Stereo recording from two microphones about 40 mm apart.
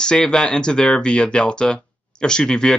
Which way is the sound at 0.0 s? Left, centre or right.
Left.